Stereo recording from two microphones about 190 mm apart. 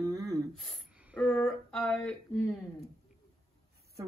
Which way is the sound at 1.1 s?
10° left (ahead or behind).